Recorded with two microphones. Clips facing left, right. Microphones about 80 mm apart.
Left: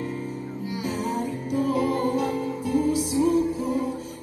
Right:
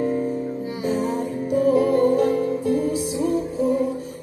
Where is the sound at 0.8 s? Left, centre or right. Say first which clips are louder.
Right 5 dB; right.